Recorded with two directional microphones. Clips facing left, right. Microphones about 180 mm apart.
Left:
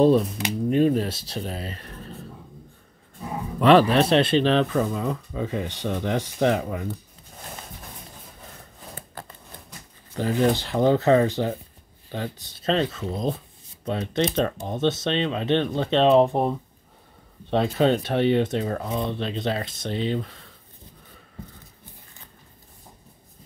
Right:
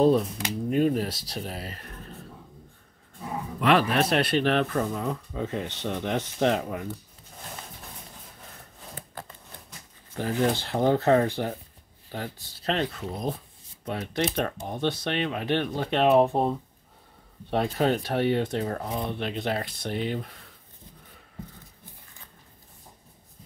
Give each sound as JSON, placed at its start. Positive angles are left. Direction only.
{"t": 0.4, "sound": "speech", "side_deg": 25}
{"t": 3.5, "sound": "speech", "side_deg": 30}
{"t": 10.1, "sound": "speech", "side_deg": 15}
{"t": 16.0, "sound": "speech", "side_deg": -10}
{"t": 16.3, "sound": "speech", "side_deg": 15}
{"t": 19.0, "sound": "speech", "side_deg": -15}
{"t": 19.3, "sound": "speech", "side_deg": 20}